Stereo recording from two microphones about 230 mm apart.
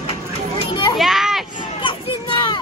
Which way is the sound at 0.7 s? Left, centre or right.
Centre.